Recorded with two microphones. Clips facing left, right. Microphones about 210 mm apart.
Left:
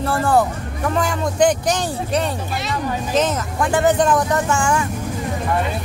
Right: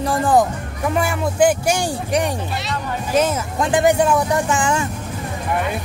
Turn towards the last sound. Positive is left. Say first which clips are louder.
# even
turn(degrees=-20)  # may be behind; listen again after turning